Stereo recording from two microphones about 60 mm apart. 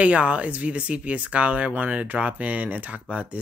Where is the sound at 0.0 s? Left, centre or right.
Right.